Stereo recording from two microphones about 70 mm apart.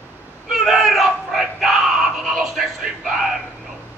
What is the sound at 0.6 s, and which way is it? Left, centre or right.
Crowd, centre.